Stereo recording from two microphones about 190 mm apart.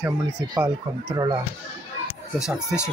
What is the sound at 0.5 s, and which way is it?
Speech, 20° right (ahead or behind).